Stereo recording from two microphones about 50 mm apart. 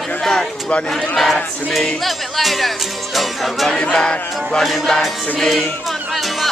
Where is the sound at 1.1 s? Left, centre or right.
Centre.